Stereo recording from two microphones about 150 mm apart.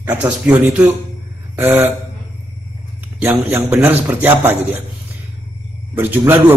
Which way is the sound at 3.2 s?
15° right (ahead or behind).